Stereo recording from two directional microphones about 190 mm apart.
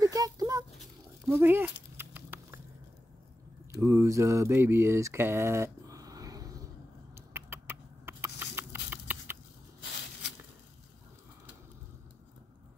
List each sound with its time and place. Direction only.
0.0 s a sound: 20° right (ahead or behind)
3.8 s speech: 15° right (ahead or behind)
7.2 s rodents: 10° right (ahead or behind)